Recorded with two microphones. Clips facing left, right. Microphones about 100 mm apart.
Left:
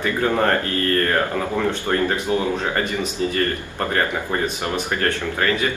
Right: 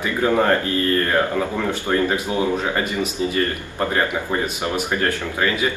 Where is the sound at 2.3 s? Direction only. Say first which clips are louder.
Even; 15° right (ahead or behind).